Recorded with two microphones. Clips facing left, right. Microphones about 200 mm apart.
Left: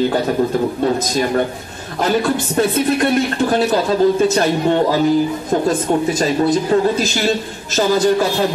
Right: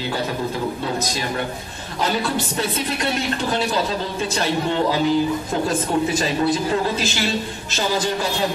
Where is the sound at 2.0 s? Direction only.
50° left (ahead or behind).